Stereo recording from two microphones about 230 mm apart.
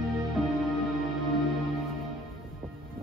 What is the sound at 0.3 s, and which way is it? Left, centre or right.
Music, centre.